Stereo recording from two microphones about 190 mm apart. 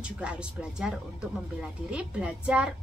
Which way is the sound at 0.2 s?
5° right (ahead or behind).